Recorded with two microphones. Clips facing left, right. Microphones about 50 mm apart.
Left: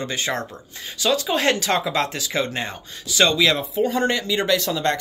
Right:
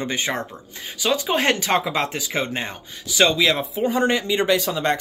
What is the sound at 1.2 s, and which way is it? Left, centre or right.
Speech, right.